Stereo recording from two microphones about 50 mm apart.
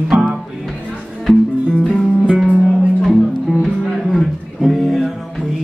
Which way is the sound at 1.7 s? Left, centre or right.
Centre.